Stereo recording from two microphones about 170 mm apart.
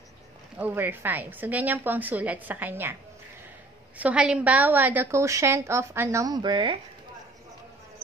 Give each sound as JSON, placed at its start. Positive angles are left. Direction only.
{"t": 0.6, "sound": "a woman's voice", "side_deg": -10}
{"t": 4.0, "sound": "a woman's voice", "side_deg": -5}